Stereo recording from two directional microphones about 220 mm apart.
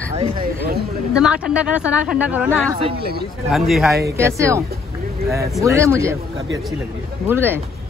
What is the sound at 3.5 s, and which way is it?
Speech, centre (ahead or behind).